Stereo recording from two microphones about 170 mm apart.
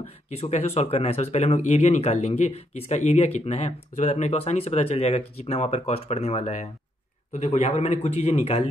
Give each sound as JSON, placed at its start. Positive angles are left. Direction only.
{"t": 0.3, "sound": "speech", "side_deg": 40}